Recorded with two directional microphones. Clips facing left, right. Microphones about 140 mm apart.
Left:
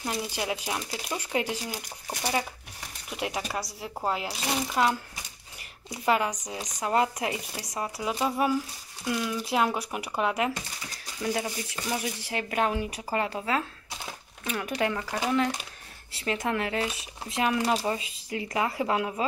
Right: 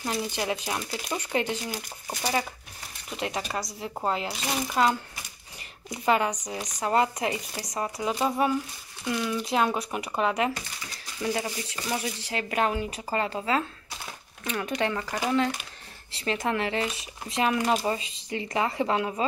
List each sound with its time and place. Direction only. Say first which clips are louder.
0.0 s speech: right 2 dB; 5° left (ahead or behind)
3.1 s speech: right 1 dB; 5° left (ahead or behind)